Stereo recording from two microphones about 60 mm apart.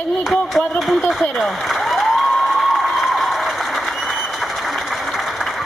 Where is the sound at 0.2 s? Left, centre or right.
Centre.